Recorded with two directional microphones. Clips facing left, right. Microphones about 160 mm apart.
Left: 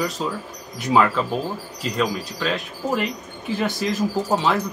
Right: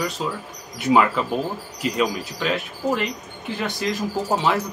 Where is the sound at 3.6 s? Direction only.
Centre (ahead or behind).